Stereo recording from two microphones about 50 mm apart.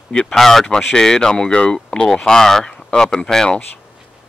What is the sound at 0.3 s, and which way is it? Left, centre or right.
Speech, centre.